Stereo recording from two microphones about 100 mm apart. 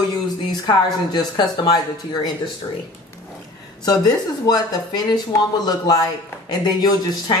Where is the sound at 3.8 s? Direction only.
40° left (ahead or behind).